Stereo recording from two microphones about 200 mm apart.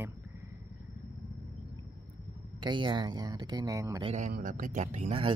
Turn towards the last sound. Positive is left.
turn(degrees=-30)  # may be behind; listen again after turning